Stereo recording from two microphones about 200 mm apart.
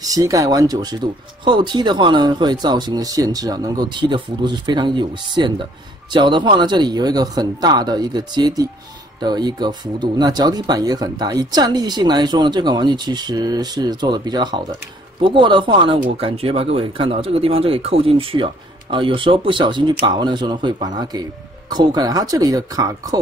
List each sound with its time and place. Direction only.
0.0 s speech: 15° right (ahead or behind)